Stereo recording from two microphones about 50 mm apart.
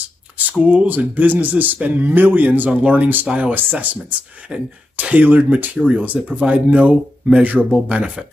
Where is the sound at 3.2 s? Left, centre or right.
Right.